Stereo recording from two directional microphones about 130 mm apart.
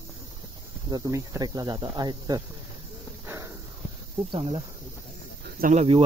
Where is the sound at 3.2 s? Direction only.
25° right (ahead or behind).